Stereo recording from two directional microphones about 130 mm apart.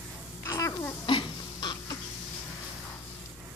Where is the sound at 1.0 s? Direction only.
40° left (ahead or behind).